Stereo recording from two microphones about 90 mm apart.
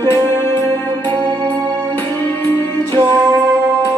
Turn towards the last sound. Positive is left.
turn(degrees=-55)  # may be behind; listen again after turning